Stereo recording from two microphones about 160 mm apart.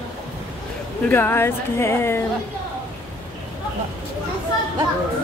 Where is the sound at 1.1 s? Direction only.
15° left (ahead or behind).